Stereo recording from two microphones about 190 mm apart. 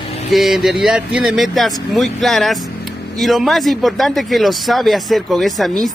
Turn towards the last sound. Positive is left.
turn(degrees=0)  # may be behind; listen again after turning